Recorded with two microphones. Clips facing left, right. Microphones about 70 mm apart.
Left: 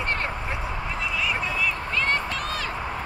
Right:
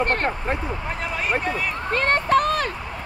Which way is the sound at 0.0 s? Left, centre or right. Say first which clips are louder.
Right 5 dB; right.